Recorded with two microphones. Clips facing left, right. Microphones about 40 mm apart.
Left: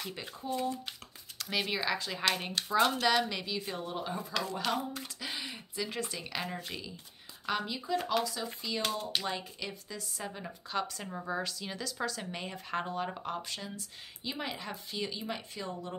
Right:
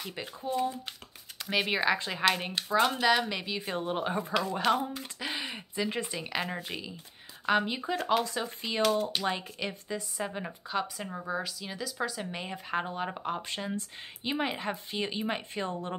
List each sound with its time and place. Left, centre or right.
0.4 s a woman's voice: centre
2.1 s a woman's voice: centre; by 4.3 s right
4.4 s a woman's voice: right
9.1 s speech: centre
9.4 s a woman's voice: right
10.7 s speech: centre
13.4 s speech: right